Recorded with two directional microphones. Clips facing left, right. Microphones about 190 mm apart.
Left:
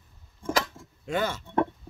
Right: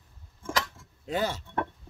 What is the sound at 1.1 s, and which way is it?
Speech, 35° right (ahead or behind).